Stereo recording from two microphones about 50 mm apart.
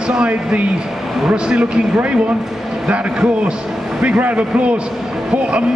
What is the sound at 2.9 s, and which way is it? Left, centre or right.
A man's voice, right.